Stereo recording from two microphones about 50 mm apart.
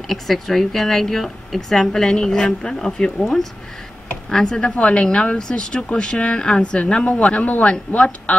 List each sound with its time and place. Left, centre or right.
0.1 s a woman's voice: centre; by 8.4 s left